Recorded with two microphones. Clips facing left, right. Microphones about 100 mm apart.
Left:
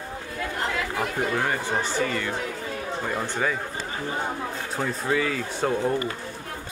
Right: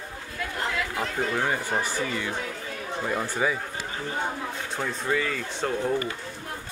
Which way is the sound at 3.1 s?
5° right (ahead or behind).